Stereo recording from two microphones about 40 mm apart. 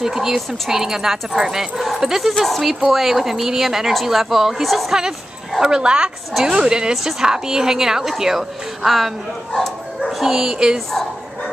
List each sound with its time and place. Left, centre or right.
0.0 s speech: centre
5.6 s a woman's voice: centre
9.5 s bow-wow: centre
10.2 s a woman's voice: centre
10.9 s bow-wow: centre